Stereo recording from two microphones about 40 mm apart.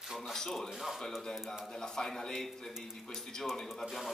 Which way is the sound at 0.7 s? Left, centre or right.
Centre.